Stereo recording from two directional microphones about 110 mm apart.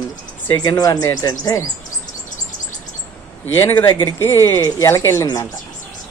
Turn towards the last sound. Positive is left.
turn(degrees=30)  # may be behind; listen again after turning